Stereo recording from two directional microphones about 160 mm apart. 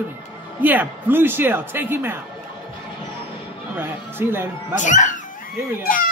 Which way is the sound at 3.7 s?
15° right (ahead or behind).